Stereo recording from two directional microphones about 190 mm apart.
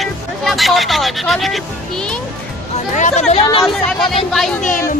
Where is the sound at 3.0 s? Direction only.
35° left (ahead or behind).